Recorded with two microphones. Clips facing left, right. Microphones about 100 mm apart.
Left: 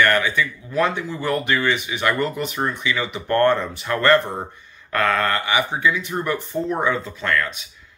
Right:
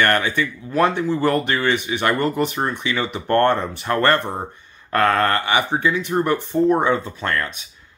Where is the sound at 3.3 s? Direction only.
30° right (ahead or behind).